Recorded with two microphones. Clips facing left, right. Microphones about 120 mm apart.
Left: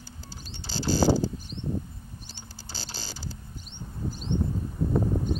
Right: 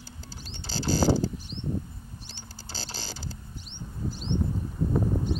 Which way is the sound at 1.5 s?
45° left (ahead or behind).